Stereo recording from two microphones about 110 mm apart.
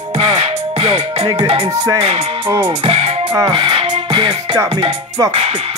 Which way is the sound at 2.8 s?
75° right (ahead or behind).